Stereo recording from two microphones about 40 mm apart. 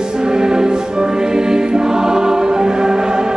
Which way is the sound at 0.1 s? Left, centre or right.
Centre.